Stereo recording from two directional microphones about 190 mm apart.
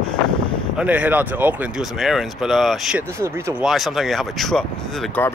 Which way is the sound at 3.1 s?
15° right (ahead or behind).